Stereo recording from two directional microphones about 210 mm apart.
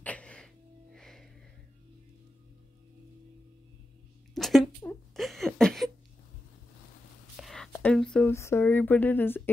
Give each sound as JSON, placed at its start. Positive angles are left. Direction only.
{"t": 0.0, "sound": "music", "side_deg": 5}
{"t": 4.4, "sound": "a sound", "side_deg": 0}
{"t": 7.3, "sound": "speech", "side_deg": 0}